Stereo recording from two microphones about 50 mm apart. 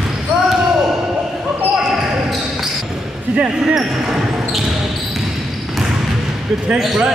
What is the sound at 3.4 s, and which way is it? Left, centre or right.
Speech, centre.